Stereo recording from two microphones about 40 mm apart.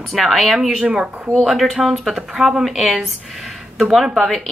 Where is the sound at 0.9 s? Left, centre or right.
Right.